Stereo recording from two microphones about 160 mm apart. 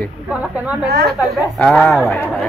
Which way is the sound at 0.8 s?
80° right.